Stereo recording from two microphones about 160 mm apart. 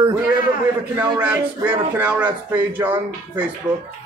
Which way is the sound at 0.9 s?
10° right (ahead or behind).